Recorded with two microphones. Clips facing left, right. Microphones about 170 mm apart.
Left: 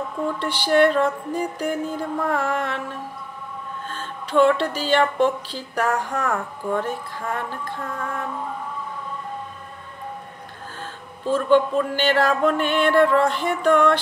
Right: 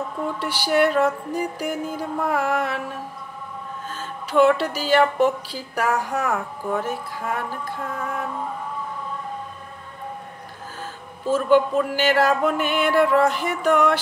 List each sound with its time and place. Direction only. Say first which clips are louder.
0.4 s a woman's voice: left 2 dB; 10° right (ahead or behind)
10.8 s a woman's voice: even; 5° right (ahead or behind)